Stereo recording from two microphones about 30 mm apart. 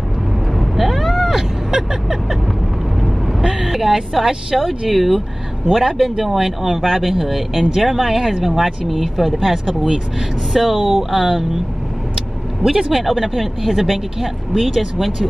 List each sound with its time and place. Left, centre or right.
0.6 s vehicle: centre
1.7 s vehicle: right
3.0 s vehicle: centre
3.6 s speech: centre
4.2 s speech: right
4.6 s speech: centre
9.2 s speech: centre
12.2 s vehicle: centre
13.0 s speech: centre